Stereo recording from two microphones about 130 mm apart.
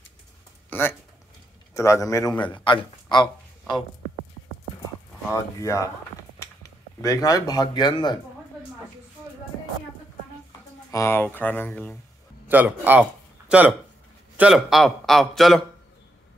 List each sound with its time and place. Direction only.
0.7 s a man's voice: 15° left (ahead or behind)
2.5 s speech: 35° left (ahead or behind)
5.3 s a man's voice: 25° left (ahead or behind)
10.9 s speech: 20° left (ahead or behind)
12.4 s a man's voice: 15° right (ahead or behind)